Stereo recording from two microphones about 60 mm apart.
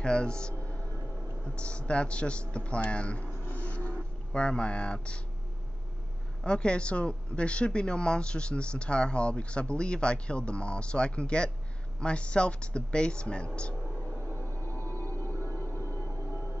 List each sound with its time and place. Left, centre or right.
0.0 s speech: centre
0.6 s music: left
1.4 s a man's voice: centre
6.4 s speech: centre
13.6 s music: centre; by 16.5 s left